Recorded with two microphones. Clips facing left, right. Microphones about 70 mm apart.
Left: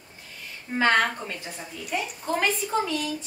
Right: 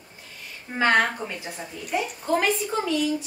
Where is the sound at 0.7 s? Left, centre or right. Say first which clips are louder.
Right 1 dB; centre.